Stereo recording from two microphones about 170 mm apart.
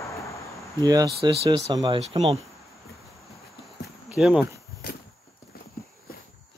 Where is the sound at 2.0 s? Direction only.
40° right (ahead or behind).